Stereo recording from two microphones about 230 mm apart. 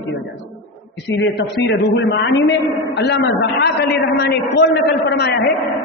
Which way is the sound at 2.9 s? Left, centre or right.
Left.